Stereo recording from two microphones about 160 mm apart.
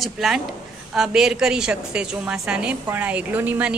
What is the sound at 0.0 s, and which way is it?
A woman's voice, centre (ahead or behind).